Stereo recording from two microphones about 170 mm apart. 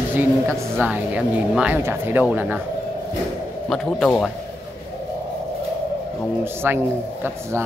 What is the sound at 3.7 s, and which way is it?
Speech, 5° left (ahead or behind).